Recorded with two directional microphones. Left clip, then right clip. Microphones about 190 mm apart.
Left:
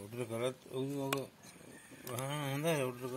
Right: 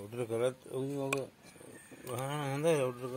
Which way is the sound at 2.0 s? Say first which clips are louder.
Right 3 dB; 35° right (ahead or behind).